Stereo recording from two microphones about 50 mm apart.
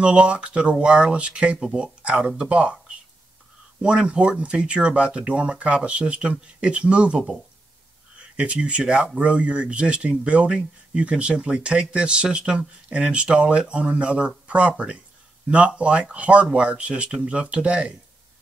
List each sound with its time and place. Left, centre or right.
0.0 s speech: right
8.4 s speech: right